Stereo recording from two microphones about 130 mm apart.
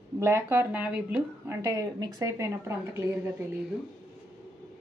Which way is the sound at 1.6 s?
30° right (ahead or behind).